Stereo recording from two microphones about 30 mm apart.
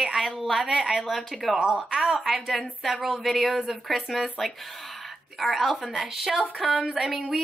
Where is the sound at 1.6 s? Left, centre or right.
Right.